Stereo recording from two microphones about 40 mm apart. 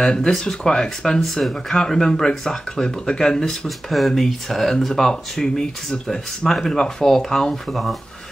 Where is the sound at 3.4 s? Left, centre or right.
Centre.